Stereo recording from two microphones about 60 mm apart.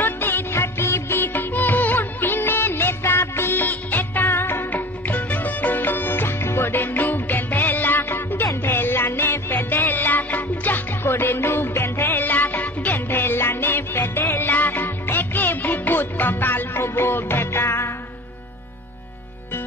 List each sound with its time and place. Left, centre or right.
0.0 s music: left
14.5 s music: left